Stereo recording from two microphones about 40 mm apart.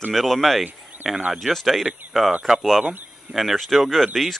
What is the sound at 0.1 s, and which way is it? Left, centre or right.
Speech, centre.